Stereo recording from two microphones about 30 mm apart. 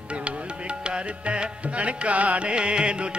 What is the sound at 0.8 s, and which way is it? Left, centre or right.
Music, right.